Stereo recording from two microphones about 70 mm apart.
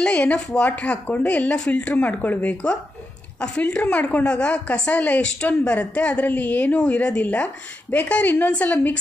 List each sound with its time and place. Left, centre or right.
0.0 s a woman's voice: centre